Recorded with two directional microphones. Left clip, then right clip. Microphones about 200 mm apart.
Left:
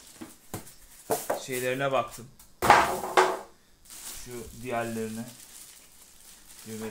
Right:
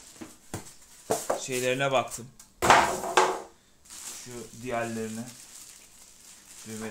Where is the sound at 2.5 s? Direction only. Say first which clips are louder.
Even; 5° right (ahead or behind).